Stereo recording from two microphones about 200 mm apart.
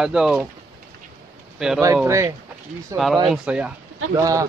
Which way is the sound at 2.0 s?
15° right (ahead or behind).